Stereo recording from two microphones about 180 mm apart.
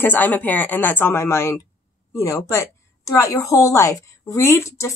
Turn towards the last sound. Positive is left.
turn(degrees=15)  # may be behind; listen again after turning